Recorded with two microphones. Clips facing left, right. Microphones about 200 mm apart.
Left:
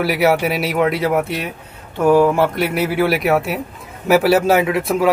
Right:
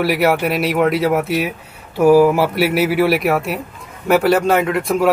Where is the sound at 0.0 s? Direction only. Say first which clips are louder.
Even; centre (ahead or behind).